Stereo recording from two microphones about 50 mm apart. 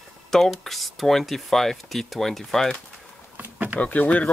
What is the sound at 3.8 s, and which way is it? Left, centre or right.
Speech, left.